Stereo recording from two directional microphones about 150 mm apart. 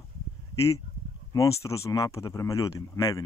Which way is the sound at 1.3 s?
20° left (ahead or behind).